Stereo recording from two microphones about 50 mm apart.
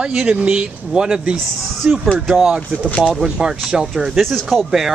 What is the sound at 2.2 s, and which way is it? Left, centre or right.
Speech, centre.